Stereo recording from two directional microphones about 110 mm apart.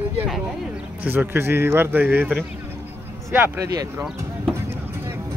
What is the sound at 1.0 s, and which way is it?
Speech, 20° right (ahead or behind).